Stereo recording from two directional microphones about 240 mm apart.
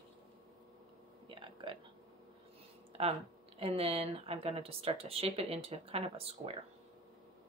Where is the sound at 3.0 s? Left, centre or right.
Right.